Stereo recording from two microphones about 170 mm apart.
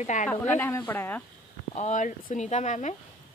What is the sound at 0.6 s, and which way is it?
Speech, 10° left (ahead or behind).